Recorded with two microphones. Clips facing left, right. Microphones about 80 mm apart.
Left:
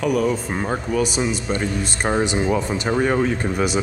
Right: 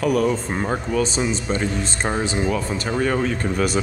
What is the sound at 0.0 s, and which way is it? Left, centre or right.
Speech, centre.